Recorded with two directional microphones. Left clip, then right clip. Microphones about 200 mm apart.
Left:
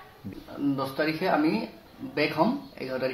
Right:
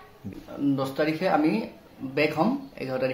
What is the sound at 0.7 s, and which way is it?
Speech, 25° right (ahead or behind).